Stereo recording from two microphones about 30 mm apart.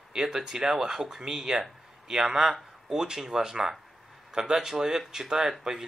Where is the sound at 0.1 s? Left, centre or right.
Right.